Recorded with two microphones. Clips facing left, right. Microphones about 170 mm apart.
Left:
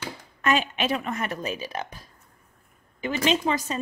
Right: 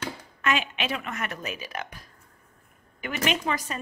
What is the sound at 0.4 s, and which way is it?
A woman's voice, 40° left (ahead or behind).